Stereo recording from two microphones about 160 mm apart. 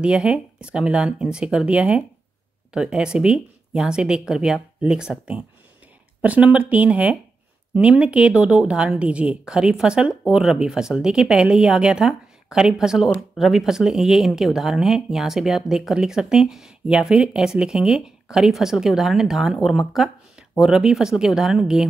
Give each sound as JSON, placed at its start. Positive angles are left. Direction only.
{"t": 0.0, "sound": "a woman's voice", "side_deg": -5}